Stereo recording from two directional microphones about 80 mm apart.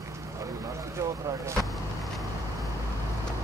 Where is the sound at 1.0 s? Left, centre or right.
Right.